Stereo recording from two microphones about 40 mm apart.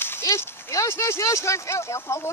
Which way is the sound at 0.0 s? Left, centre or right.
Left.